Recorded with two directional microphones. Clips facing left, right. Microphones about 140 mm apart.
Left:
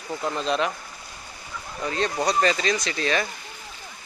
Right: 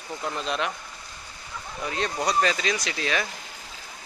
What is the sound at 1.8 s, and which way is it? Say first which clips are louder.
Speech: left 3 dB; 5° right (ahead or behind).